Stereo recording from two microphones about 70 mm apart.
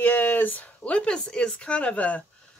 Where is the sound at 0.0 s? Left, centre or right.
Left.